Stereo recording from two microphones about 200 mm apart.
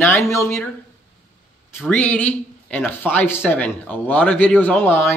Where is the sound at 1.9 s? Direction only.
5° left (ahead or behind).